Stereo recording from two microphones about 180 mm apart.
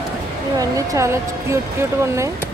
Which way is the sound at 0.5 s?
20° right (ahead or behind).